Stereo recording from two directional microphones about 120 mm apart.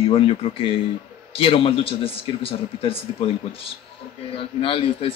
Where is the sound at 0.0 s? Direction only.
50° left (ahead or behind).